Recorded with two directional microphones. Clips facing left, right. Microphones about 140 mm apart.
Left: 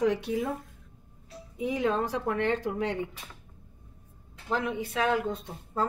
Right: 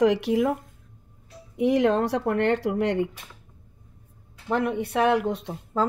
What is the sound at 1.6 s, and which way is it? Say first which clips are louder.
Speech: right 7 dB; 80° right.